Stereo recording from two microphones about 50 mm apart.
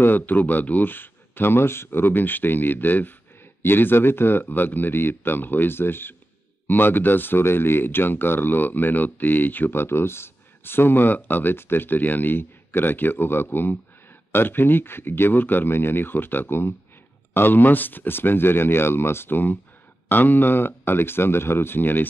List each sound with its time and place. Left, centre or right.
0.0 s speech: left